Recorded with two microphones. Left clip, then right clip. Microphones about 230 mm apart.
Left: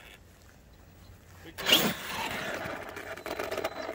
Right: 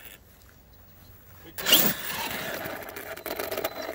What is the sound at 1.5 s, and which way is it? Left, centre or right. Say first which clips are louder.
Zipper: right 2 dB; right.